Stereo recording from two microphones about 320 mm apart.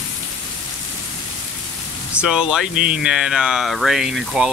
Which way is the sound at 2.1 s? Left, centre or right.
Centre.